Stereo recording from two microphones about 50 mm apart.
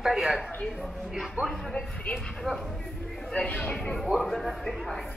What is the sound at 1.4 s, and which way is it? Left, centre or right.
Speech, right.